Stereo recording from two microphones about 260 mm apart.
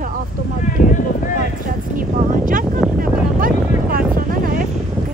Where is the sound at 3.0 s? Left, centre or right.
Right.